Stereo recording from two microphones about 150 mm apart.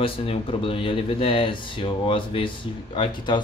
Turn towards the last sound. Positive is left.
turn(degrees=30)  # may be behind; listen again after turning